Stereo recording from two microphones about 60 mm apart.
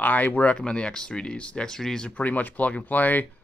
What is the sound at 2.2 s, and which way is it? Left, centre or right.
Speech, left.